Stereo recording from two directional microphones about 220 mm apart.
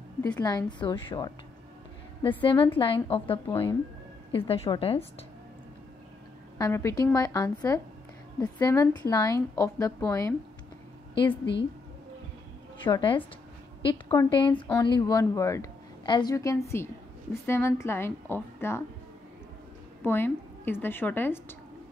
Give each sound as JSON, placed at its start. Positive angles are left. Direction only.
{"t": 0.4, "sound": "a woman's voice", "side_deg": 20}
{"t": 6.6, "sound": "a woman's voice", "side_deg": 15}
{"t": 12.8, "sound": "a woman's voice", "side_deg": 20}
{"t": 20.0, "sound": "a woman's voice", "side_deg": 10}